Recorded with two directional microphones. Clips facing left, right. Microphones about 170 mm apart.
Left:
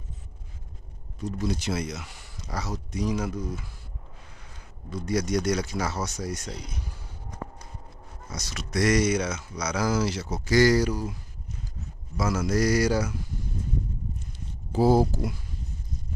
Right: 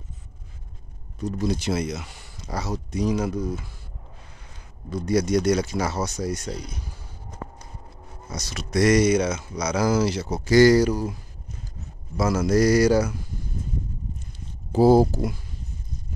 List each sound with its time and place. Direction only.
1.4 s speech: 30° right (ahead or behind)
5.0 s speech: 30° right (ahead or behind)
8.3 s speech: 30° right (ahead or behind)
12.2 s speech: 40° right (ahead or behind)
14.7 s speech: 35° right (ahead or behind)